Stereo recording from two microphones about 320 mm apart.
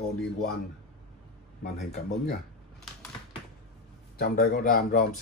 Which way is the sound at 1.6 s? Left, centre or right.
Left.